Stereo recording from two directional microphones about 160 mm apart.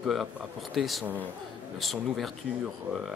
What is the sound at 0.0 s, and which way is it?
Speech, centre (ahead or behind).